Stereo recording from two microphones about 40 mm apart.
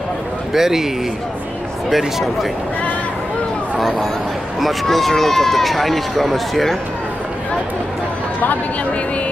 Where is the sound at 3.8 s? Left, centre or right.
Centre.